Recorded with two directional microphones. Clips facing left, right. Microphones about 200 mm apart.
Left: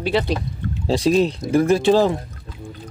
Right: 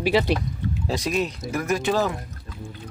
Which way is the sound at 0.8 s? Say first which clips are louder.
Left 9 dB; 30° left (ahead or behind).